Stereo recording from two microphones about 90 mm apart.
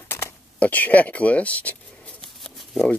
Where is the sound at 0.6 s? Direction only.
20° left (ahead or behind).